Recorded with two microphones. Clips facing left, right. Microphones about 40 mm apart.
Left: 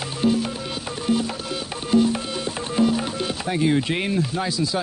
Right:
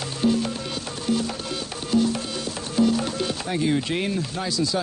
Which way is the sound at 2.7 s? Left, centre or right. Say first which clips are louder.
Even; centre.